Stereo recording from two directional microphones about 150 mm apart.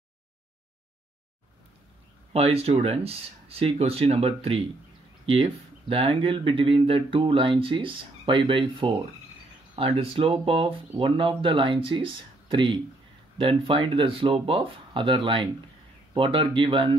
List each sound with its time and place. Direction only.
2.3 s speech: 40° right (ahead or behind)